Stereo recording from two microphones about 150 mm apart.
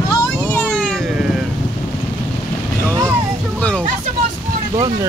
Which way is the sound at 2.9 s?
20° right (ahead or behind).